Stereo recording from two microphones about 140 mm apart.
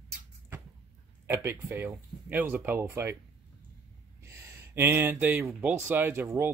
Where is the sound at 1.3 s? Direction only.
20° right (ahead or behind).